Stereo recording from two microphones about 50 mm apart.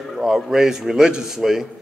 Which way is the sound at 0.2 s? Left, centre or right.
Centre.